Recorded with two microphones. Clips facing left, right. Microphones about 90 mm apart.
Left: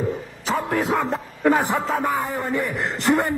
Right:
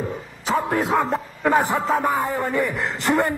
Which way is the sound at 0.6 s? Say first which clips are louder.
Right 2 dB; 10° right (ahead or behind).